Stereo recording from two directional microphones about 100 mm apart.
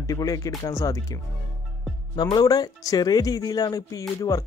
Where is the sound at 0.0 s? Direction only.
35° left (ahead or behind).